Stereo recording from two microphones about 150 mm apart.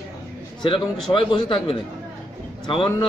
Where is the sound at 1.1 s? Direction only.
35° left (ahead or behind).